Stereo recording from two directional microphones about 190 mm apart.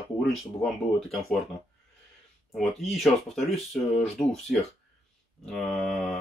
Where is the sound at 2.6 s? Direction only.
Centre (ahead or behind).